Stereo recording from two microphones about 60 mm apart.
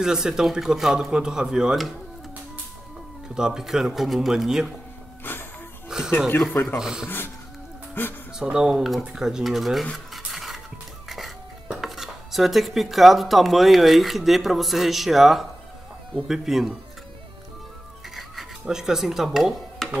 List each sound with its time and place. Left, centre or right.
0.0 s speech: centre
3.3 s speech: centre
5.2 s a sound: left
5.9 s a sound: centre
6.5 s speech: left
6.8 s speech: centre
8.0 s speech: left
8.4 s speech: centre
9.9 s cutlery: centre
11.1 s music: centre
11.8 s speech: centre
18.1 s music: centre
19.8 s music: centre